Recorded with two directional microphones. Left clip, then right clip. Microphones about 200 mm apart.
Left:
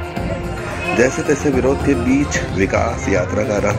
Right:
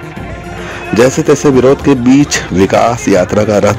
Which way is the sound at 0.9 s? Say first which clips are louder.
Right 8 dB; 60° right (ahead or behind).